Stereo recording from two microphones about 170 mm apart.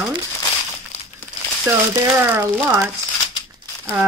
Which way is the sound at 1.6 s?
15° right (ahead or behind).